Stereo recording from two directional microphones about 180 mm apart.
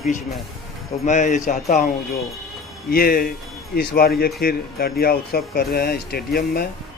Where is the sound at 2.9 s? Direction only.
55° left (ahead or behind).